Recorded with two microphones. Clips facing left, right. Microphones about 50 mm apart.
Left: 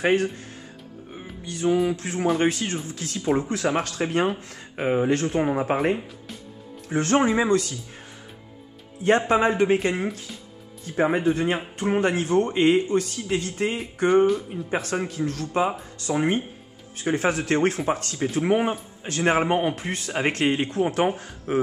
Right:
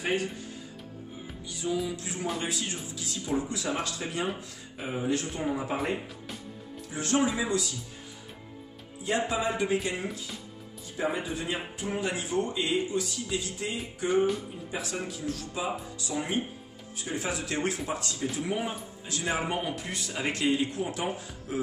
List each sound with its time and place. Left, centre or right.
0.0 s speech: left
1.1 s music: left
1.9 s speech: left
6.9 s speech: left
9.3 s speech: left